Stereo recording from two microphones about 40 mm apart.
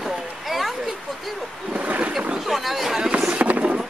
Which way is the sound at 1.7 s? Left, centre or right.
Right.